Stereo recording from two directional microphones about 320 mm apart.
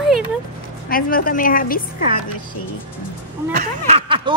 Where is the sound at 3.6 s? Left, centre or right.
Centre.